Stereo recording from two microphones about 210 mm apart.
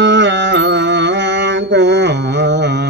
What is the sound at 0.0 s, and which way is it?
Mantra, 55° right (ahead or behind).